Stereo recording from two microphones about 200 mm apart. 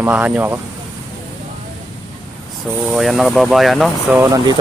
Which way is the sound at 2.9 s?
Centre (ahead or behind).